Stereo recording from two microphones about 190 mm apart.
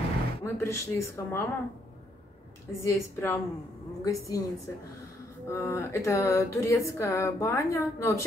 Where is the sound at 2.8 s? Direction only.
15° left (ahead or behind).